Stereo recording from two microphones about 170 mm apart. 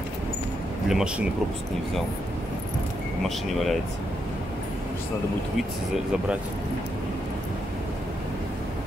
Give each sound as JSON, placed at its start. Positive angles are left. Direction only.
{"t": 0.8, "sound": "speech", "side_deg": -5}